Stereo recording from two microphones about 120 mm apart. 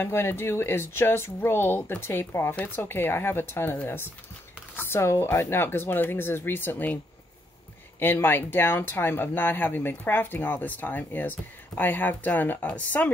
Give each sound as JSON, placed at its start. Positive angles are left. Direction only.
{"t": 0.0, "sound": "speech", "side_deg": 20}
{"t": 8.0, "sound": "speech", "side_deg": 15}